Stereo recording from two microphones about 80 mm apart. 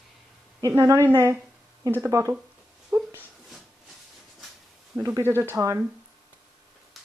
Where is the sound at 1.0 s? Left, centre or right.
Right.